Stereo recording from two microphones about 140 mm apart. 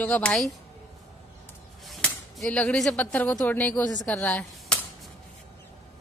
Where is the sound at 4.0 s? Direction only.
10° left (ahead or behind).